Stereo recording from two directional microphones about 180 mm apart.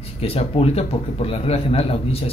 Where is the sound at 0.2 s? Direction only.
35° left (ahead or behind).